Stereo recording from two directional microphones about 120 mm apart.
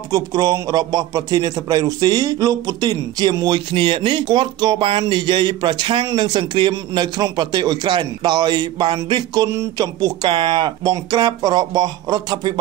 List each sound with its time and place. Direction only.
0.1 s a man's voice: 30° right (ahead or behind)